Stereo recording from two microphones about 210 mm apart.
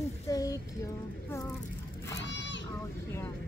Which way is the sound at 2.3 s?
60° left (ahead or behind).